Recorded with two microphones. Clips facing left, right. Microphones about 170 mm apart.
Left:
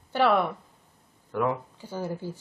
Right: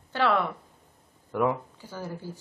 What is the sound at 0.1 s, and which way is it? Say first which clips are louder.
Speech: left 3 dB; 15° left (ahead or behind).